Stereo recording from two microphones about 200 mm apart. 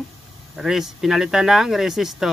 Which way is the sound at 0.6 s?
Centre (ahead or behind).